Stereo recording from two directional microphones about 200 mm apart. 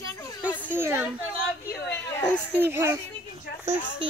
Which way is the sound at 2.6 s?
10° right (ahead or behind).